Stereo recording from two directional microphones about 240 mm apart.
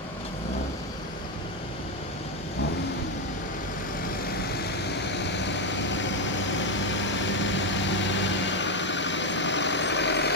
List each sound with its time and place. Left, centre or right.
5.4 s vehicle: left